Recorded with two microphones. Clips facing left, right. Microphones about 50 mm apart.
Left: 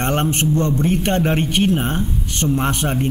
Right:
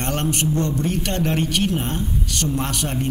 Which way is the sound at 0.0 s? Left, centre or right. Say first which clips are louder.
Left 4 dB; left.